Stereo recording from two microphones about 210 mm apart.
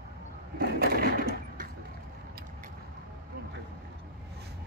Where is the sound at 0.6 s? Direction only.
45° right (ahead or behind).